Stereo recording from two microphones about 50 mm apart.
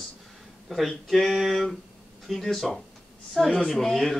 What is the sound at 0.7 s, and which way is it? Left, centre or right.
Speech, centre.